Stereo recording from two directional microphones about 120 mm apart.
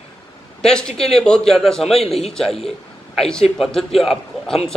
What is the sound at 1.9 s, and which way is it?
Speech, 55° left (ahead or behind).